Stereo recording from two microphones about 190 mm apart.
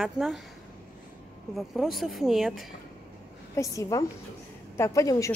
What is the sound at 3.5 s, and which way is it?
Speech, 15° left (ahead or behind).